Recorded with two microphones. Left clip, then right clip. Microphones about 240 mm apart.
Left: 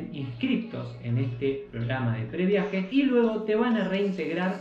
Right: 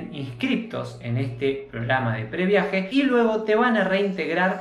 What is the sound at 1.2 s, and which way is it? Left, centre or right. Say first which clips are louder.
Speech: right 4 dB; centre.